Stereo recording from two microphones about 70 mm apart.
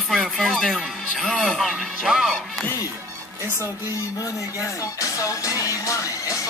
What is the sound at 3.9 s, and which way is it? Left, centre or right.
Music, left.